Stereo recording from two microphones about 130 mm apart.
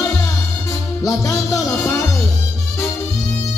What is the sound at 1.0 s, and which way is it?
Music, 25° left (ahead or behind).